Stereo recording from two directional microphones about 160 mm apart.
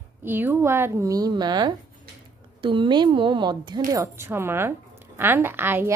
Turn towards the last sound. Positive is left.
turn(degrees=-15)  # may be behind; listen again after turning